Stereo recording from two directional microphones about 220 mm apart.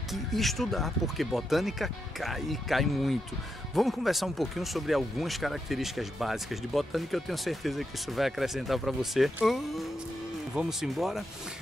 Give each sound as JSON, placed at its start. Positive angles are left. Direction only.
{"t": 0.1, "sound": "speech", "side_deg": 0}